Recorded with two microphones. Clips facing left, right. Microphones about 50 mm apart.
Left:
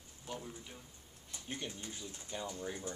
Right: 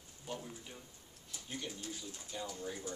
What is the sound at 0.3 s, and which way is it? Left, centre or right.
Speech, centre.